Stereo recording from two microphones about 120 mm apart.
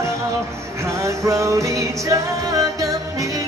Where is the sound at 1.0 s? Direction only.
25° right (ahead or behind).